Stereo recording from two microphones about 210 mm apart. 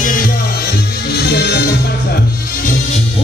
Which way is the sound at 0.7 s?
50° left (ahead or behind).